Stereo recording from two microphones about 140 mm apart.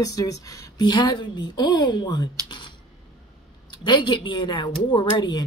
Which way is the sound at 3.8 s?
35° left (ahead or behind).